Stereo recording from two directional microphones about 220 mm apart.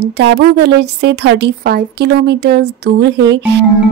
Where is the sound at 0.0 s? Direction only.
50° right (ahead or behind).